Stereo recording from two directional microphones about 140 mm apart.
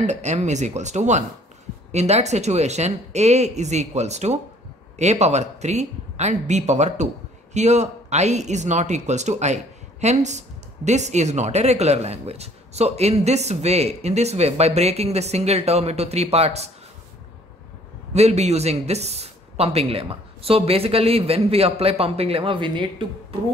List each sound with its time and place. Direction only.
0.0 s speech: 55° right (ahead or behind)
18.1 s speech: 50° right (ahead or behind)